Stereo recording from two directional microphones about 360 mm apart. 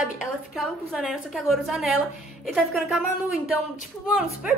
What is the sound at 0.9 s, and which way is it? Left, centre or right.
A woman's voice, centre.